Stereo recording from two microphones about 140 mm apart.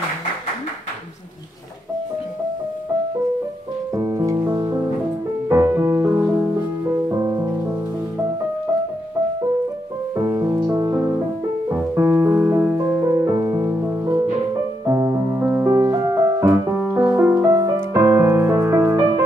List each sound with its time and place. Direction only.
3.9 s music: 25° right (ahead or behind)
10.1 s music: 20° right (ahead or behind)